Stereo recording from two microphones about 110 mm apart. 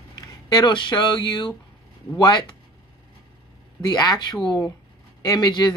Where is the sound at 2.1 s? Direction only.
40° left (ahead or behind).